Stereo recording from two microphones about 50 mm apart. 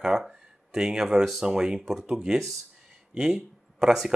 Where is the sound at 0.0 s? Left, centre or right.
Centre.